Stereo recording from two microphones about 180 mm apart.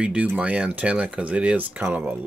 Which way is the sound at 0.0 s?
5° right (ahead or behind).